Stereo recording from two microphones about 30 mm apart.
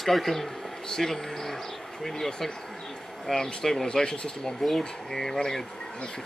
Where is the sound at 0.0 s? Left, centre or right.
Centre; by 4.2 s left.